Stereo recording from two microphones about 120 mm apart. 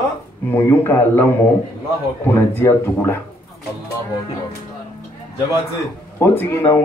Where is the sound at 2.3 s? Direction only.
20° left (ahead or behind).